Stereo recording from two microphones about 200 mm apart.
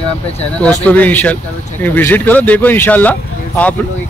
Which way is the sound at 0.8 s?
10° left (ahead or behind).